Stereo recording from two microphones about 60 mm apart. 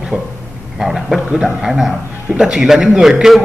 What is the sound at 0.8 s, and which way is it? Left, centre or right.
Speech, centre.